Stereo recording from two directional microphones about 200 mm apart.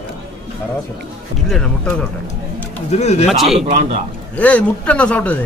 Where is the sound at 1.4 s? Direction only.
5° left (ahead or behind).